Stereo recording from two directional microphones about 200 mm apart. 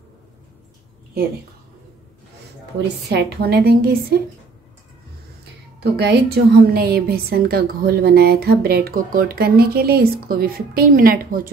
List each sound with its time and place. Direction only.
3.1 s a woman's voice: 55° right (ahead or behind)
5.9 s a woman's voice: 50° right (ahead or behind)